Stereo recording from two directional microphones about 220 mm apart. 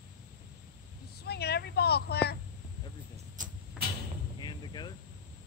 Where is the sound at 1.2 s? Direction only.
45° left (ahead or behind).